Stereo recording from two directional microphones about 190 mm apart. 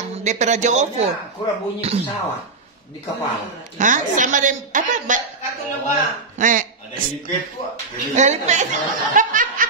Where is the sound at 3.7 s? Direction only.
40° right (ahead or behind).